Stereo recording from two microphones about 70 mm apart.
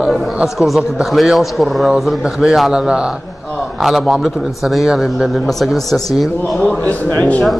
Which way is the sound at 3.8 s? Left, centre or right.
Centre.